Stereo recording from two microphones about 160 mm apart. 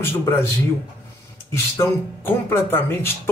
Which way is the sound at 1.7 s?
15° left (ahead or behind).